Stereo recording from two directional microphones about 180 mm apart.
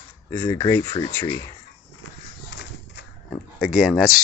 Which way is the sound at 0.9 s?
25° left (ahead or behind).